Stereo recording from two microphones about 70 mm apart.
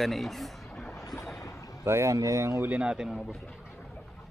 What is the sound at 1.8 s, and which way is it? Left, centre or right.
Speech, right.